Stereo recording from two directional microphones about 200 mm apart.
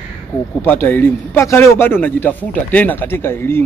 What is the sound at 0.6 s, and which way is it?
Speech, 10° left (ahead or behind).